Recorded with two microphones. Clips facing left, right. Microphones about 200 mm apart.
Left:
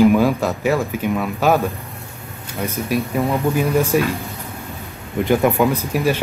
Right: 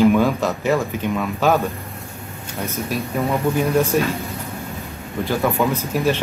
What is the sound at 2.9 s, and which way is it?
Speech, 10° left (ahead or behind).